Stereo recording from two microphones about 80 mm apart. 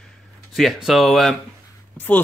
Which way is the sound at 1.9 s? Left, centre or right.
Left.